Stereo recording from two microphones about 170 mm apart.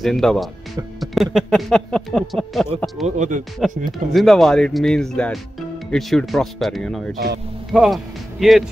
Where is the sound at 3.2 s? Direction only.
50° right (ahead or behind).